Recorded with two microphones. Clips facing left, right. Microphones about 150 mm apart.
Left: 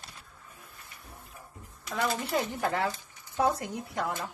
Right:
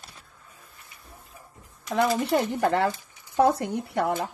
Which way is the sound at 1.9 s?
65° right (ahead or behind).